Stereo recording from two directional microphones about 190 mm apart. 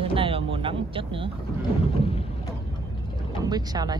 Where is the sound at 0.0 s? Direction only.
30° right (ahead or behind).